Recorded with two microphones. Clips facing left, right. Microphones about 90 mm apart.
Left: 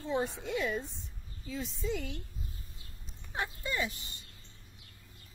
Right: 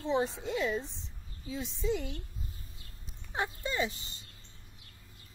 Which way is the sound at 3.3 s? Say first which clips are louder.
Right 2 dB; 20° right (ahead or behind).